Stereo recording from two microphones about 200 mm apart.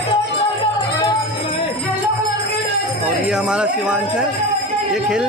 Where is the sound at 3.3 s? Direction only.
5° right (ahead or behind).